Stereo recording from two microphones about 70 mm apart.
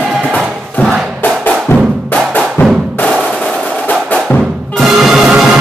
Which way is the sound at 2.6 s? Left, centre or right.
Left.